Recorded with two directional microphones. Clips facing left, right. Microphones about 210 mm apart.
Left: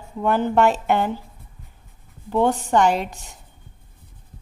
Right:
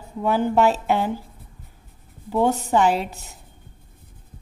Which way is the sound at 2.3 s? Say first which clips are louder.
Left 1 dB; 10° right (ahead or behind).